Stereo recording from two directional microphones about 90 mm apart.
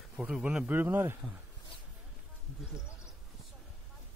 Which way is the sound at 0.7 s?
25° right (ahead or behind).